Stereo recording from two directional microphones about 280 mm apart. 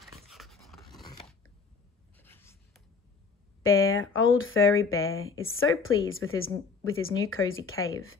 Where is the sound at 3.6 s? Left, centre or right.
Left.